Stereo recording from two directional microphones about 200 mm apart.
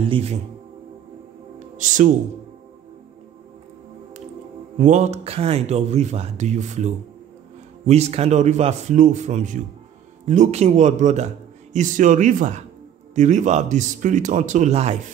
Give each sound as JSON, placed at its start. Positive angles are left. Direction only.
{"t": 0.1, "sound": "a man's voice", "side_deg": -30}
{"t": 4.7, "sound": "a man's voice", "side_deg": -35}